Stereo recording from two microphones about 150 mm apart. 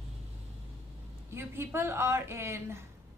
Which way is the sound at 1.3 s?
15° right (ahead or behind).